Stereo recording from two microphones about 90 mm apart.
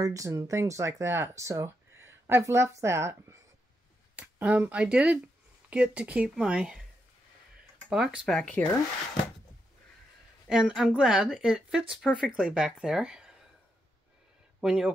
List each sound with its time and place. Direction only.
0.0 s speech: 40° right (ahead or behind)
4.1 s speech: 15° right (ahead or behind)
7.9 s speech: 10° right (ahead or behind)
8.3 s speech: 5° left (ahead or behind)
10.5 s speech: 5° right (ahead or behind)
12.1 s speech: 5° left (ahead or behind)
12.4 s speech: 10° right (ahead or behind)
14.6 s speech: 5° right (ahead or behind)